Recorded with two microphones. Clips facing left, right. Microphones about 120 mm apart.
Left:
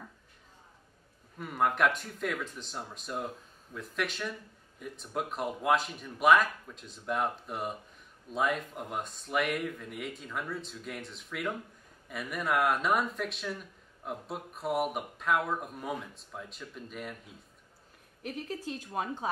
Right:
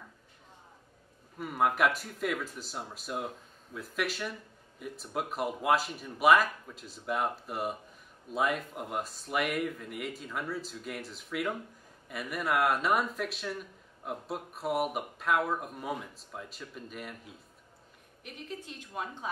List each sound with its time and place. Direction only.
1.4 s speech: 5° right (ahead or behind)
18.2 s speech: 40° left (ahead or behind)